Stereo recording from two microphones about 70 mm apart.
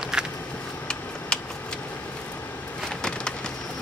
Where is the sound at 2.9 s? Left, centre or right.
Centre.